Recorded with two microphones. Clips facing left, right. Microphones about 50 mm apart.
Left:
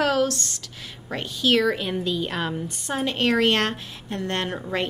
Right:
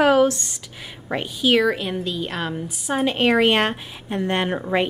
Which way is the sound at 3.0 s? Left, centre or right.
Centre.